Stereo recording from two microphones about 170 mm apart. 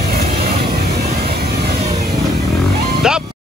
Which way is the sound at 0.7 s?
65° right (ahead or behind).